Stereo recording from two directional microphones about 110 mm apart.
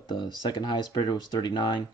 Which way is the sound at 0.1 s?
45° left (ahead or behind).